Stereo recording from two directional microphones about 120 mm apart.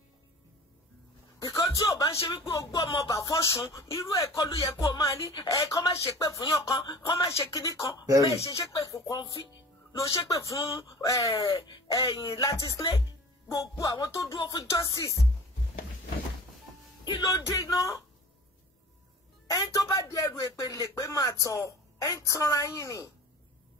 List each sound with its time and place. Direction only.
1.4 s speech: 30° left (ahead or behind)
5.2 s speech: 45° left (ahead or behind)
5.5 s speech: 30° left (ahead or behind)
12.2 s speech: 30° left (ahead or behind)
17.0 s speech: 40° left (ahead or behind)
17.3 s speech: 25° left (ahead or behind)
19.4 s speech: 25° left (ahead or behind)